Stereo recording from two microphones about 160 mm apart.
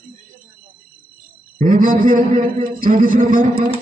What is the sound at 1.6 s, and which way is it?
A man's voice, 60° right (ahead or behind).